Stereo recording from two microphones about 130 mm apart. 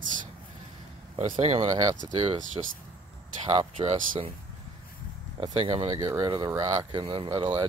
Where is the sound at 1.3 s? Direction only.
50° right (ahead or behind).